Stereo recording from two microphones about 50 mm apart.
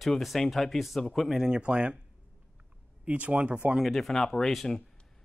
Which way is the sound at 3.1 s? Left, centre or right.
Right.